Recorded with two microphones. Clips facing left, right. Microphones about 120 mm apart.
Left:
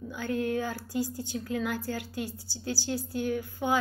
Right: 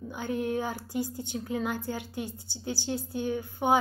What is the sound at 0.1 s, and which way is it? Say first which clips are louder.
A woman's voice: even; 20° right (ahead or behind).